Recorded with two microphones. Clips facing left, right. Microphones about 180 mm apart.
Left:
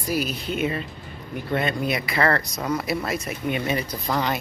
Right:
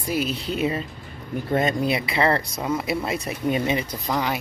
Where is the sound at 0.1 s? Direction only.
30° right (ahead or behind).